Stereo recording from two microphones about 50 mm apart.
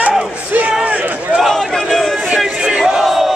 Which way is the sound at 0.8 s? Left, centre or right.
Right.